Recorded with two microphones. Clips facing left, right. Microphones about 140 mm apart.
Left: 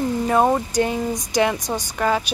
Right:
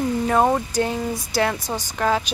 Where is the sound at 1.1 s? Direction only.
15° left (ahead or behind).